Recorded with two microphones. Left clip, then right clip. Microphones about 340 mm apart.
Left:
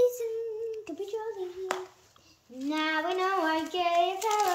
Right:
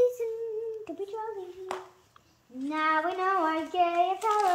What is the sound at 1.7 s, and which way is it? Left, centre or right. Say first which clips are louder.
Speech: left 2 dB; centre.